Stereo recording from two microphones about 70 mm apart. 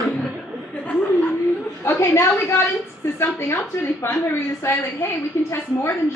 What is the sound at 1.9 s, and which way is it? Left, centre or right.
A woman's voice, left.